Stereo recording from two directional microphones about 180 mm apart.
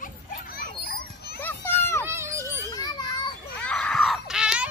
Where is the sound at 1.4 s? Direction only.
10° left (ahead or behind).